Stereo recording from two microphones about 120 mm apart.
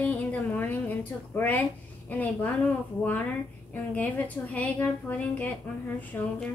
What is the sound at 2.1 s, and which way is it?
Speech, 15° left (ahead or behind).